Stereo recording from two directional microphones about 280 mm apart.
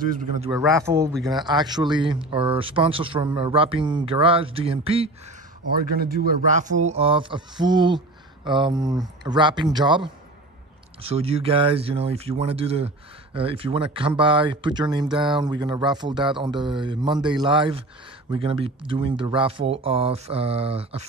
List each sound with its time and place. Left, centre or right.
0.5 s speech: centre
5.9 s speech: right